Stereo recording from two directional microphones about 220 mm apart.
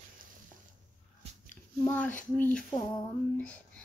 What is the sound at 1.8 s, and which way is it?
Speech, 10° left (ahead or behind).